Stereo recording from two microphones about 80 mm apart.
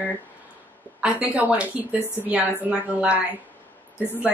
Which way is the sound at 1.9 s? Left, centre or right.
Left.